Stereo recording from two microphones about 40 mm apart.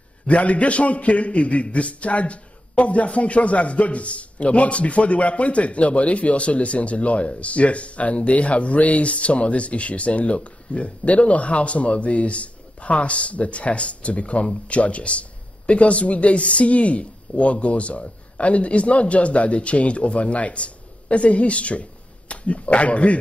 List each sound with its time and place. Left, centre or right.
0.3 s a man's voice: left